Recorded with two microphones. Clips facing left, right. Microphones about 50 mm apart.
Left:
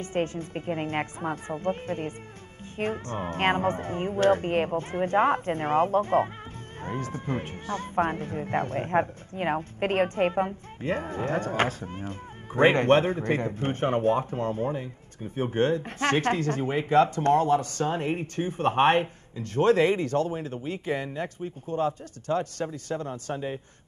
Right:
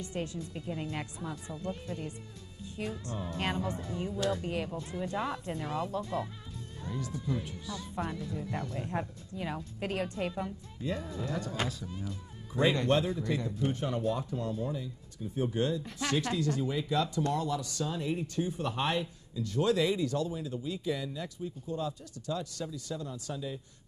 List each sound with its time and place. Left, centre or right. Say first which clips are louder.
0.0 s speech: left 8 dB; left